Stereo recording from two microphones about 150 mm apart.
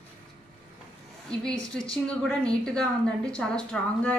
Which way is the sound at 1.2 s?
5° left (ahead or behind).